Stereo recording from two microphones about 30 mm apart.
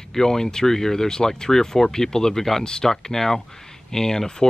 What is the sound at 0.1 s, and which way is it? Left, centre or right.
Speech, centre.